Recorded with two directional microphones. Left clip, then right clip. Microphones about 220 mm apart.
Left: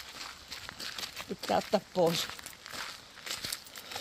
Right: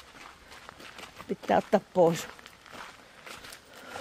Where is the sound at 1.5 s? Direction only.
30° right (ahead or behind).